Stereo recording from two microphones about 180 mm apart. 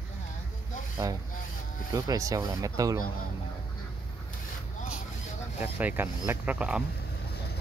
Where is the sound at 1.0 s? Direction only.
20° right (ahead or behind).